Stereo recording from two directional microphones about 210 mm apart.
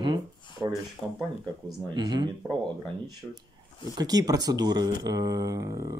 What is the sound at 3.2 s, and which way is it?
Speech, 5° right (ahead or behind).